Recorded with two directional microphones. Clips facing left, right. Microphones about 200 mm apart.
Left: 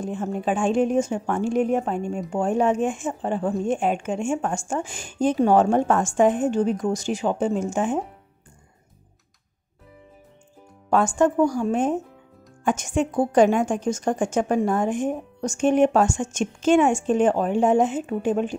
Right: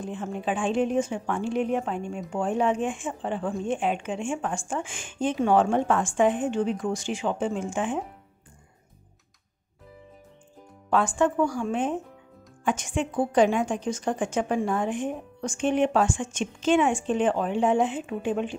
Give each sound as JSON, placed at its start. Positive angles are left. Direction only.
{"t": 0.0, "sound": "a woman's voice", "side_deg": 45}
{"t": 10.9, "sound": "a woman's voice", "side_deg": 45}